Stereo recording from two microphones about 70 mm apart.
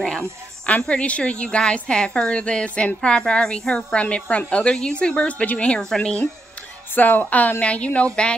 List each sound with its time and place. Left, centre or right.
0.0 s a woman's voice: centre
7.0 s speech: left